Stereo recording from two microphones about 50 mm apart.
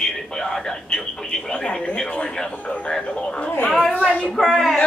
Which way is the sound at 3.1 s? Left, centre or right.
Left.